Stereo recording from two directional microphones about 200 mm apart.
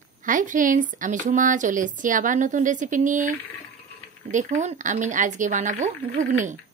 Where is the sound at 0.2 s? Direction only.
40° right (ahead or behind).